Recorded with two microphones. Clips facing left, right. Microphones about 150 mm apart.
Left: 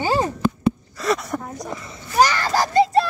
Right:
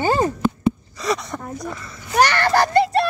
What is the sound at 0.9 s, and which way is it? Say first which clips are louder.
Speech: left 1 dB; centre (ahead or behind).